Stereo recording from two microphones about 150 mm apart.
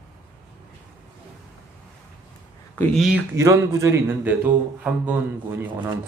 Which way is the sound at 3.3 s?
20° right (ahead or behind).